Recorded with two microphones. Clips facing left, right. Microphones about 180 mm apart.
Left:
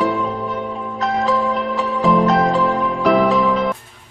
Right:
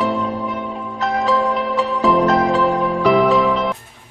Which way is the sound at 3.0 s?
Centre (ahead or behind).